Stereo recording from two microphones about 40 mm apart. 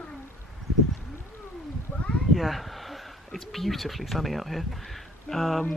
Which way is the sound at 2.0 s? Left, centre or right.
Left.